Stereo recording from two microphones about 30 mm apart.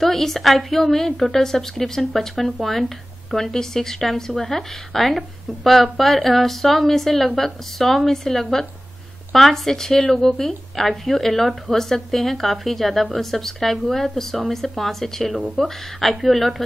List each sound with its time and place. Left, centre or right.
0.0 s speech: centre